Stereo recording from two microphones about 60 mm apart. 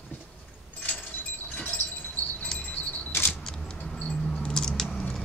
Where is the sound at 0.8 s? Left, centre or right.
Left.